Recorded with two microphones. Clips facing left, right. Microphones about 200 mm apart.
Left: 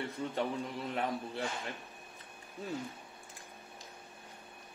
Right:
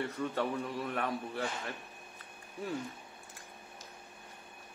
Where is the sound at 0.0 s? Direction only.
15° left (ahead or behind).